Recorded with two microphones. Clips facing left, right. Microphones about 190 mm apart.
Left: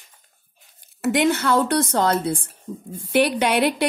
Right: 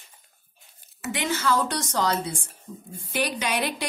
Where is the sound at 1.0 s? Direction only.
60° left (ahead or behind).